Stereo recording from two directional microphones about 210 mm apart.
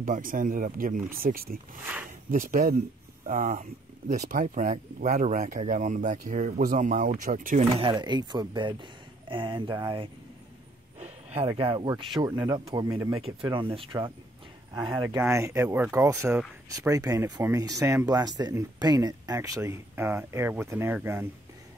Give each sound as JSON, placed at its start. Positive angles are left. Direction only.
{"t": 0.0, "sound": "speech", "side_deg": -40}
{"t": 7.8, "sound": "speech", "side_deg": -20}
{"t": 13.2, "sound": "speech", "side_deg": -25}